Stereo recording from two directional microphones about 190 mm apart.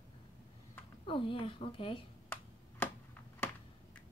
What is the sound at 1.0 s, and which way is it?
Speech, 25° left (ahead or behind).